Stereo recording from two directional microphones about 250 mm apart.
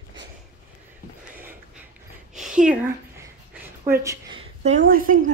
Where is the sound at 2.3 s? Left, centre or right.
Centre.